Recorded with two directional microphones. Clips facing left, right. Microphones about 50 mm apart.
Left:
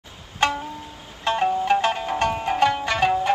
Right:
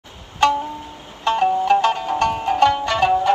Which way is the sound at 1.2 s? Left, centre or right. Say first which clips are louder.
Right 4 dB; left.